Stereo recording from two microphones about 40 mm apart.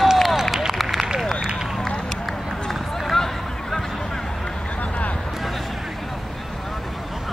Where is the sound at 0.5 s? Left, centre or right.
Centre.